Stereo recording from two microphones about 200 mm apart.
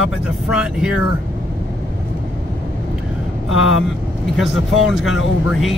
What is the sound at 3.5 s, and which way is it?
Speech, 85° left.